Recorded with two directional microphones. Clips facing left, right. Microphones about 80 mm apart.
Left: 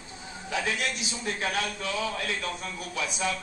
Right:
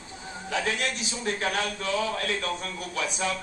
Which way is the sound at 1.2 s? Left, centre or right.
Right.